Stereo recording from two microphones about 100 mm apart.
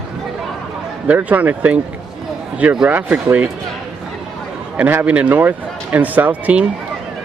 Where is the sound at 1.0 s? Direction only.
15° right (ahead or behind).